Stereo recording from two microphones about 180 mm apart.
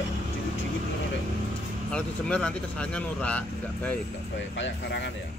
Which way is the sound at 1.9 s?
5° left (ahead or behind).